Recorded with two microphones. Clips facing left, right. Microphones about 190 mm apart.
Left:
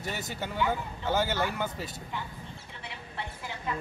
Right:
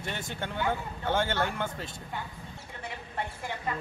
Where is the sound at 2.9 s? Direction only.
50° right (ahead or behind).